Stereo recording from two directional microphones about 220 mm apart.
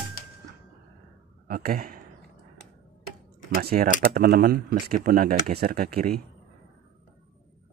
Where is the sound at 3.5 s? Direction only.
40° right (ahead or behind).